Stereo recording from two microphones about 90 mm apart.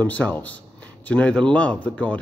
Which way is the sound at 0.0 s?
15° left (ahead or behind).